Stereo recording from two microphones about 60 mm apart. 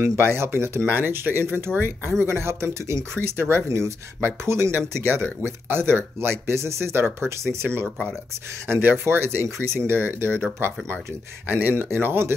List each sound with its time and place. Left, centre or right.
0.2 s speech: right
3.6 s speech: right
4.2 s speech: right
11.4 s speech: right